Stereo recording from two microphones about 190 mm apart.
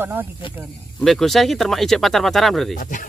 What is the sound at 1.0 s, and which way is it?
Speech, centre (ahead or behind).